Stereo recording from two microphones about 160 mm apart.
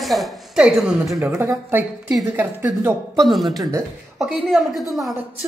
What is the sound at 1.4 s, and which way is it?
Speech, 15° right (ahead or behind).